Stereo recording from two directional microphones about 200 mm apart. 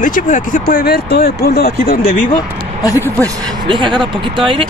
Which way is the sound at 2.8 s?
15° left (ahead or behind).